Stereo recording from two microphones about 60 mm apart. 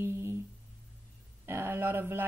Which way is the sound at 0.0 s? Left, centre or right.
Right.